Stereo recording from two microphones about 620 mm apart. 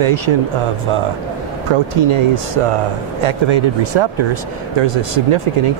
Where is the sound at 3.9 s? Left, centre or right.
Right.